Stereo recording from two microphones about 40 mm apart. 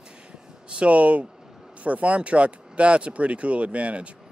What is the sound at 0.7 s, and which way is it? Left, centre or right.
Speech, right.